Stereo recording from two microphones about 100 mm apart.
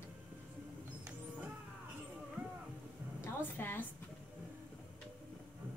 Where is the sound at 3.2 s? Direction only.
20° left (ahead or behind).